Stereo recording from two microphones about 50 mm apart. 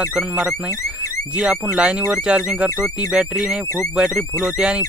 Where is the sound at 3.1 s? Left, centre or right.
Centre.